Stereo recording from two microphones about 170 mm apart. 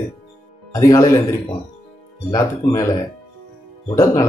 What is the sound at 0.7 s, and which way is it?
Speech, 20° left (ahead or behind).